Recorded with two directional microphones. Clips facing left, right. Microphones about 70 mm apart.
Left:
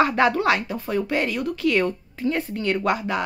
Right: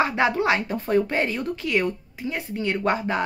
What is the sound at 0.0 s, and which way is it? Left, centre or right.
Speech, right.